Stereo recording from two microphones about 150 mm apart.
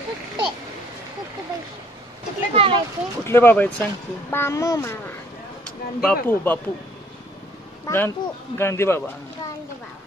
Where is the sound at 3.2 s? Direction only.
15° left (ahead or behind).